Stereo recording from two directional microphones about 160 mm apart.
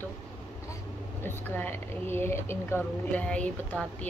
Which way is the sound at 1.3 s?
10° left (ahead or behind).